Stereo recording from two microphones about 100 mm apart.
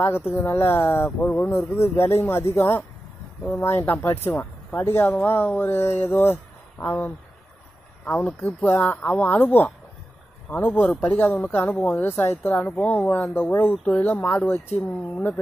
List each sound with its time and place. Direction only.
0.0 s speech: 25° left (ahead or behind)